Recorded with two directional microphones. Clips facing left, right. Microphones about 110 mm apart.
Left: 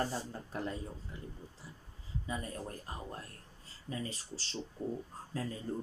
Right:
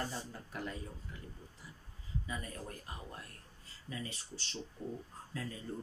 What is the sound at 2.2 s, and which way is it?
Speech, 30° left (ahead or behind).